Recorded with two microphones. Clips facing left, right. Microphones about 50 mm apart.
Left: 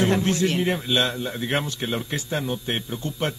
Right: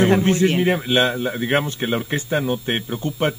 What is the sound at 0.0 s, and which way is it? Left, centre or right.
Speech, right.